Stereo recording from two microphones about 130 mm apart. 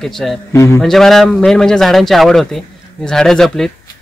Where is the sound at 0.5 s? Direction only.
20° left (ahead or behind).